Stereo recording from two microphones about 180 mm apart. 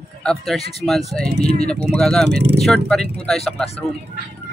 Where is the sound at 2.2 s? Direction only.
65° right (ahead or behind).